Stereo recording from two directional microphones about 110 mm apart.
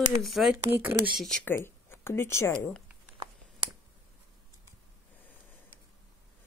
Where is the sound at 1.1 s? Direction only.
5° left (ahead or behind).